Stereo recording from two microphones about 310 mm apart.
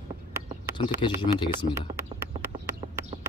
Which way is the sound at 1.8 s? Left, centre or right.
Centre.